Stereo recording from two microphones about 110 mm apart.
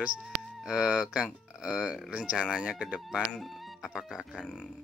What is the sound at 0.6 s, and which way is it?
Speech, 5° right (ahead or behind).